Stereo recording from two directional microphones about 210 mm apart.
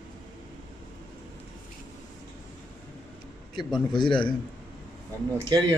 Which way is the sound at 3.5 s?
20° left (ahead or behind).